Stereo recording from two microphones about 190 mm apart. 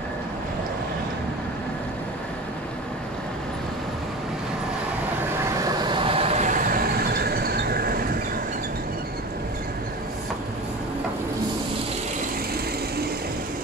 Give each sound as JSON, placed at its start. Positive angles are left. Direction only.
{"t": 5.6, "sound": "train", "side_deg": -25}